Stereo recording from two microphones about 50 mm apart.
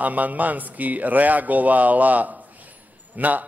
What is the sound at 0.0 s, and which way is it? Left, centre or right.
Speech, right.